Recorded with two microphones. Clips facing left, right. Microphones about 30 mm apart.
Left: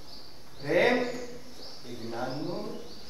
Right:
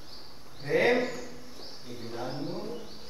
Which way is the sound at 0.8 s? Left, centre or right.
Centre.